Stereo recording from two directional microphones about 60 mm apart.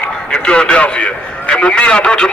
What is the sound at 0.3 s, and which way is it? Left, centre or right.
A man's voice, centre.